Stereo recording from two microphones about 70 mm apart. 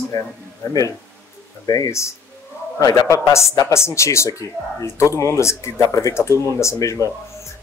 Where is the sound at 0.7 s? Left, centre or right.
Left.